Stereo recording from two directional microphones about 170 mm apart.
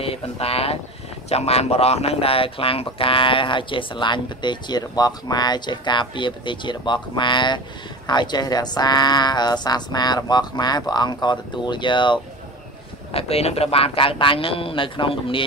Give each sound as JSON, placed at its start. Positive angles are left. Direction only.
{"t": 0.0, "sound": "speech", "side_deg": 35}